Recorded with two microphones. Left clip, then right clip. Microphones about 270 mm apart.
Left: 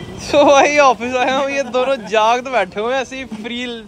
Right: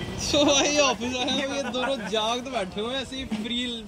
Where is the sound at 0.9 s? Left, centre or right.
Centre.